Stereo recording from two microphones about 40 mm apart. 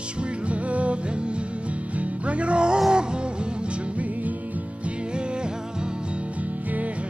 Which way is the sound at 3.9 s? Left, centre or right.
Right.